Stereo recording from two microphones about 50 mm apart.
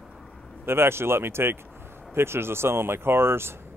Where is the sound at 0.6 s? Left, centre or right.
Right.